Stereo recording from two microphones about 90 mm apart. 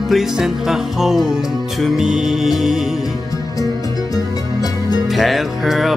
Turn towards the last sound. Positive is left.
turn(degrees=0)  # may be behind; listen again after turning